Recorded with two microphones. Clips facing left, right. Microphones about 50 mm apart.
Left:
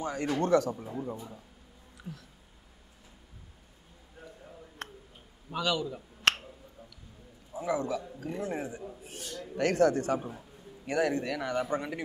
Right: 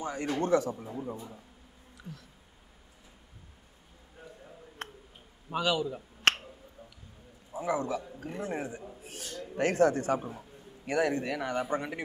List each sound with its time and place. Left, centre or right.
0.2 s a man's voice: centre
0.8 s a man's voice: centre
2.0 s a sound: centre
5.5 s a sound: centre
7.5 s a man's voice: right
9.0 s speech: right
9.6 s a man's voice: right